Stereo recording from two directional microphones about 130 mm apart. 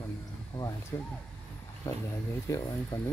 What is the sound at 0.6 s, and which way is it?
Speech, 30° left (ahead or behind).